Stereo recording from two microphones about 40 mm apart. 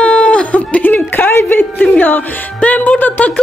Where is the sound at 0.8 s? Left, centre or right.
Left.